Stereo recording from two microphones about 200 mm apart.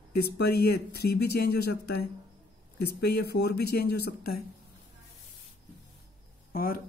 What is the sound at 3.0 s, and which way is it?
Speech, 55° left (ahead or behind).